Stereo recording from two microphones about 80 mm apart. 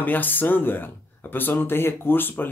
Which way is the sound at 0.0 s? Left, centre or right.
Left.